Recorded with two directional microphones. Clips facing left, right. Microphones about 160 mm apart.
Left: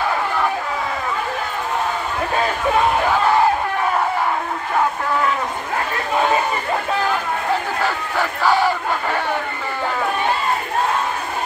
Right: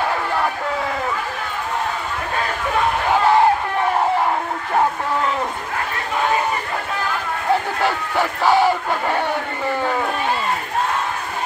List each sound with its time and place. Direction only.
8.2 s battle cry: 20° right (ahead or behind)